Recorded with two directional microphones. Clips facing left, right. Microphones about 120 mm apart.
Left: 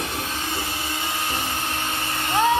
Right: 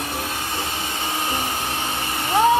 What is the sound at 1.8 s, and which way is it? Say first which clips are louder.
Vehicle: right 2 dB; 15° right (ahead or behind).